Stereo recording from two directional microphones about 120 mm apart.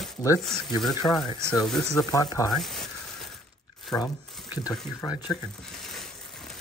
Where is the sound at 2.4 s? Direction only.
Centre (ahead or behind).